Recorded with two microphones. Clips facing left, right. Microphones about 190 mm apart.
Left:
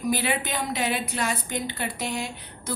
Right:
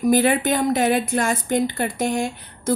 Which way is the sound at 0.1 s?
50° right (ahead or behind).